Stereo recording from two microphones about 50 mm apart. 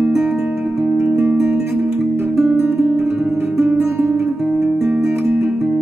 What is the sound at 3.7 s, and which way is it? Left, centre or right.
Guitar, right.